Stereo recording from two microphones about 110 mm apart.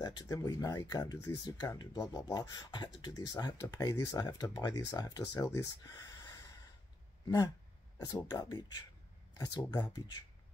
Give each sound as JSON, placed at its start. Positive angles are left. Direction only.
{"t": 0.0, "sound": "speech", "side_deg": 35}